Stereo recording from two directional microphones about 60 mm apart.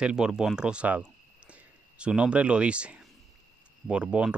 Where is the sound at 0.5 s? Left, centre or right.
Centre.